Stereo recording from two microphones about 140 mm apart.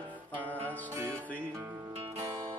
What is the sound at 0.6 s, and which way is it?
Music, 10° left (ahead or behind).